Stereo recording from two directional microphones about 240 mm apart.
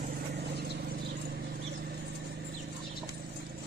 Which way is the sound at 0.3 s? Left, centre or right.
Right.